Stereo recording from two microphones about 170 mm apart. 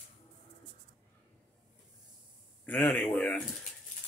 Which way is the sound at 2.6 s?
10° left (ahead or behind).